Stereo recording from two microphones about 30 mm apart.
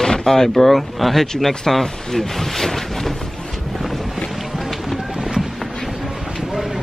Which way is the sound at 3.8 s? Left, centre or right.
Centre.